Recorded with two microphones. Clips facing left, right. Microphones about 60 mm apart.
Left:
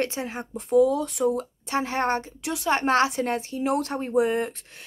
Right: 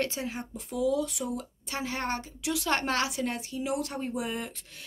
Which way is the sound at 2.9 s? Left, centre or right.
Left.